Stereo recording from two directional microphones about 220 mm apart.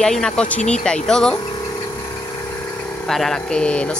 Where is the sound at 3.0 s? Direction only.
Centre (ahead or behind).